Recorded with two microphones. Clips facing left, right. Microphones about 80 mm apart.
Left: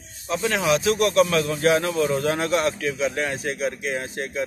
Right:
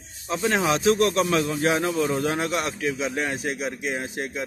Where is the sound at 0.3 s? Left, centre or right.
Right.